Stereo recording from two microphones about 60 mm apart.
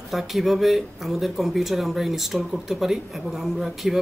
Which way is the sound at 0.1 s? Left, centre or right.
Centre.